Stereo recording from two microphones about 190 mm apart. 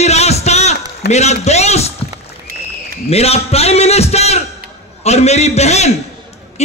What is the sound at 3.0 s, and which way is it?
A man's voice, 35° left (ahead or behind).